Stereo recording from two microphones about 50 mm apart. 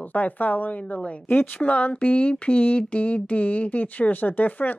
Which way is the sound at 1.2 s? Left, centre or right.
Left.